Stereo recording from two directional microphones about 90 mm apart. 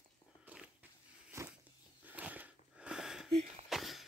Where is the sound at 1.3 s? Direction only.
30° right (ahead or behind).